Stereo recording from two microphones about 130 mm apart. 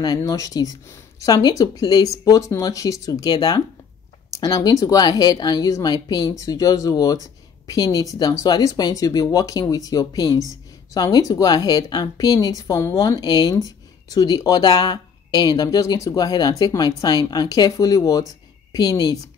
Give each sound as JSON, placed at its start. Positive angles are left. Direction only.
{"t": 0.0, "sound": "a woman's voice", "side_deg": 30}